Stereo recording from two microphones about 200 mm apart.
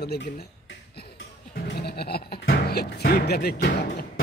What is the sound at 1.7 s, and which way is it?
Speech, 55° left (ahead or behind).